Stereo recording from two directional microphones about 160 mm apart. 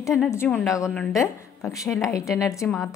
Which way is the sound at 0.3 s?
15° left (ahead or behind).